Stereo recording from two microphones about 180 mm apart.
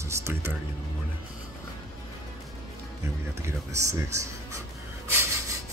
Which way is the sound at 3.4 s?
15° right (ahead or behind).